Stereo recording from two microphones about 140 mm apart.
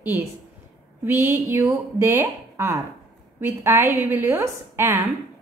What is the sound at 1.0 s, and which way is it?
A woman's voice, 15° right (ahead or behind).